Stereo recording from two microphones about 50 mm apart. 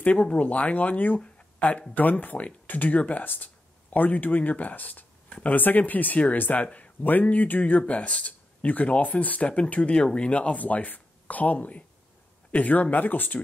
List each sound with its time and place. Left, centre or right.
0.0 s speech: left
7.8 s speech: left